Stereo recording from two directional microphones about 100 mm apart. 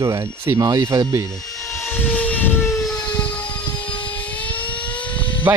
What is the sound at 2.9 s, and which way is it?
Siren, 40° left (ahead or behind).